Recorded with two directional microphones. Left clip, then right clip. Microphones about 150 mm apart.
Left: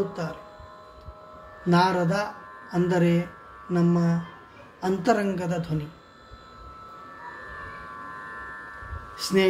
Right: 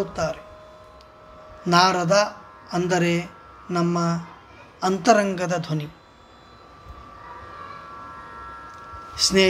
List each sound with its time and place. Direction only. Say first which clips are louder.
0.1 s a woman's voice: right 8 dB; 15° right (ahead or behind)
1.7 s a woman's voice: right 5 dB; 20° right (ahead or behind)
9.1 s speech: right 5 dB; 15° right (ahead or behind)